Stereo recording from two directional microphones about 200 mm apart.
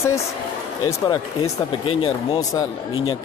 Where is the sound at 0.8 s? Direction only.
20° left (ahead or behind).